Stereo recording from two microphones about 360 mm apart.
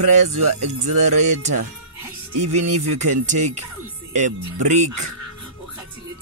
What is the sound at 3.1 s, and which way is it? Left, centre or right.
Speech, centre.